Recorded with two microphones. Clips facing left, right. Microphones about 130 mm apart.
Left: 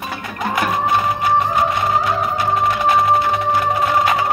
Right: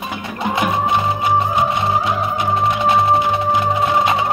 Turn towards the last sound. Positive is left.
turn(degrees=-20)  # may be behind; listen again after turning